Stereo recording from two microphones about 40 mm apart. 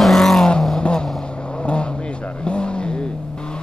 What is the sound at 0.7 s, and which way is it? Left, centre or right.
Vehicle, centre.